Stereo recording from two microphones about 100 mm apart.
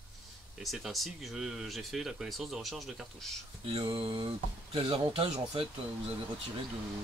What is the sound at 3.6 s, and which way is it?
Speech, 60° right (ahead or behind).